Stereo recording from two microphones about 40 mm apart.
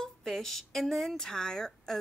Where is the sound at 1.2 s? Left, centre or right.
Centre.